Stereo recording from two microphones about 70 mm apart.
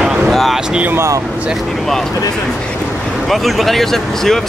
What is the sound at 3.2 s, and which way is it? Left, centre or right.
Speech, centre.